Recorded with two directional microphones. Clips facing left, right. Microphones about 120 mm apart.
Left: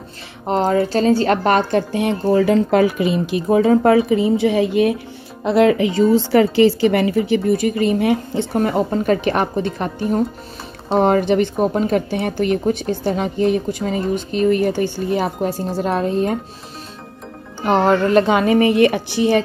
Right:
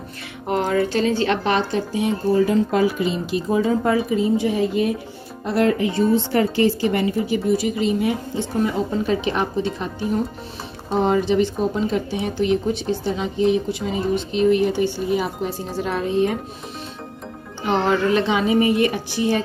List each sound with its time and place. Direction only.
0.5 s speech: 30° left (ahead or behind); by 4.9 s 80° left
5.4 s a woman's voice: 90° left
7.4 s a woman's voice: 55° left (ahead or behind)
17.6 s a woman's voice: 50° left (ahead or behind); by 19.4 s 75° left (ahead or behind)